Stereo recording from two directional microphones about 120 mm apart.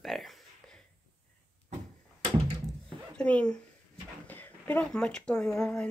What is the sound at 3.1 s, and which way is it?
Speech, 10° left (ahead or behind).